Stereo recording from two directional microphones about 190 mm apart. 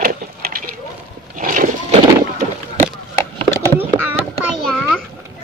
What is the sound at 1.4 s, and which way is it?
Horse, 45° right (ahead or behind).